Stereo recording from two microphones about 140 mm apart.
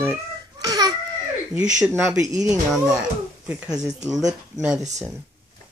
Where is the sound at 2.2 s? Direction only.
25° right (ahead or behind).